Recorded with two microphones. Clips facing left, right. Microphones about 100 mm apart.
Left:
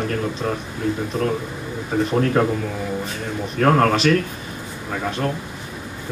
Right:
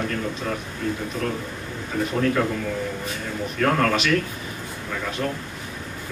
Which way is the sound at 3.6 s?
40° left (ahead or behind).